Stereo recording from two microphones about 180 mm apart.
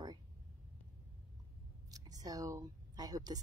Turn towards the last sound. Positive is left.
turn(degrees=-20)  # may be behind; listen again after turning